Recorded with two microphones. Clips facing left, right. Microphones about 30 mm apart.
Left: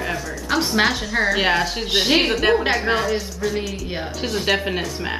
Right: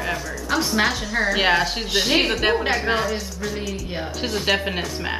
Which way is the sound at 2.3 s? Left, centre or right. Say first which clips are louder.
Left 2 dB; centre.